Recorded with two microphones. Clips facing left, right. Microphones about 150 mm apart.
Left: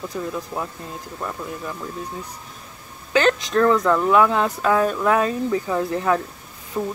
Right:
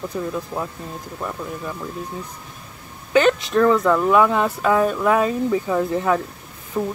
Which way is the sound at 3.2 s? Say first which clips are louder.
Right 2 dB; 15° right (ahead or behind).